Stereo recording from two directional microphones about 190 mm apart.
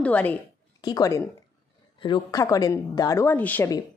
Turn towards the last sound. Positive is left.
turn(degrees=10)  # may be behind; listen again after turning